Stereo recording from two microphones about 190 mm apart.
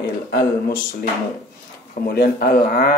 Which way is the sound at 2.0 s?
50° left (ahead or behind).